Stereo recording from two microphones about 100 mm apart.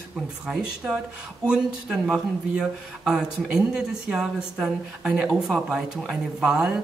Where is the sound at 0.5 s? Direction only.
5° right (ahead or behind).